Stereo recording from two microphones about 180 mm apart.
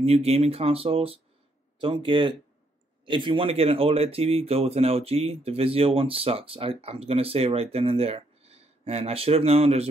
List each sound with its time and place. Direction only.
0.0 s speech: 35° right (ahead or behind)